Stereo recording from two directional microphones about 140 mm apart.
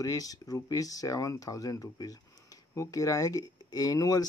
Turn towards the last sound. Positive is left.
turn(degrees=25)  # may be behind; listen again after turning